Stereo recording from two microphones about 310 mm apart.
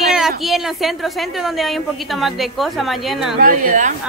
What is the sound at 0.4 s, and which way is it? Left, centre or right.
A woman's voice, centre.